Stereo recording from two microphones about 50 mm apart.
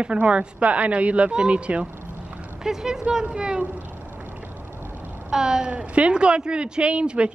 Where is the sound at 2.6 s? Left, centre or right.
Centre.